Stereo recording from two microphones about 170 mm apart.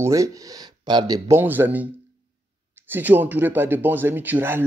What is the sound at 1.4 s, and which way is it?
A man's voice, 10° right (ahead or behind).